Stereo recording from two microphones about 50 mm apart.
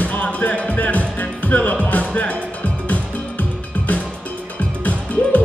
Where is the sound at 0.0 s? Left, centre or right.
Left.